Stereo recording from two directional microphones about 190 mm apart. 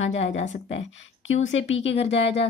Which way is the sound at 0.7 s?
90° left.